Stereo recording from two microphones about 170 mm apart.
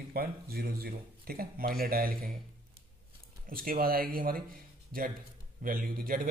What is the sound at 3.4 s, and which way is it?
Speech, 60° right (ahead or behind).